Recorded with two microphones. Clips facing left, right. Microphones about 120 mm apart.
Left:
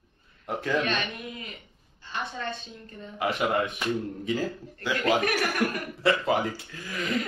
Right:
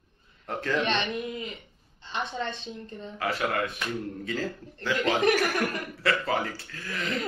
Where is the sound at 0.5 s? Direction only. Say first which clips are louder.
Left 1 dB; 10° left (ahead or behind).